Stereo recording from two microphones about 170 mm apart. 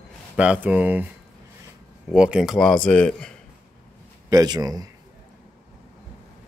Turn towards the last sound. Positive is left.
turn(degrees=-20)  # may be behind; listen again after turning